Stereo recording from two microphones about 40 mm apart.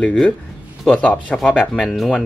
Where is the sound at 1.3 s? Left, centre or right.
Left.